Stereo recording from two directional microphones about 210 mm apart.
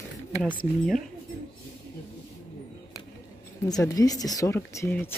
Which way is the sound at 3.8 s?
15° left (ahead or behind).